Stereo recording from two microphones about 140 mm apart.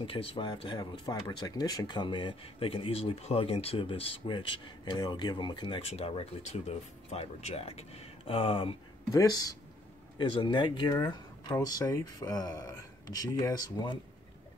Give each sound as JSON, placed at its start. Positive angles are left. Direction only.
{"t": 0.0, "sound": "speech", "side_deg": 40}
{"t": 5.9, "sound": "speech", "side_deg": 45}
{"t": 9.1, "sound": "speech", "side_deg": 25}